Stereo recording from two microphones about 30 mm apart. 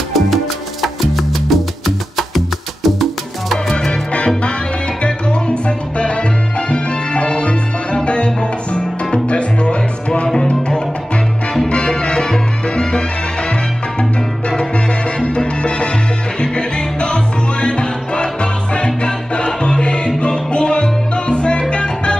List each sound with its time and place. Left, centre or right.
0.8 s music: centre
2.1 s salsa music: centre
5.0 s music: left
10.3 s music: left
11.7 s salsa music: left
15.1 s music: left